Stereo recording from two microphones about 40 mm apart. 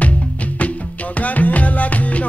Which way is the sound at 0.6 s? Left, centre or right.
Left.